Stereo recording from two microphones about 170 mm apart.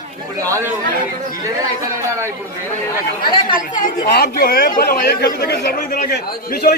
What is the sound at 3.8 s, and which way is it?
A man's voice, 65° left (ahead or behind).